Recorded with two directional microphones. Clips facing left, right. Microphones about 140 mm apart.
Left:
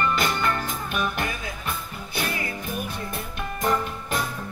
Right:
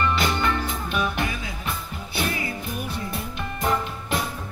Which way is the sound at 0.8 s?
50° left (ahead or behind).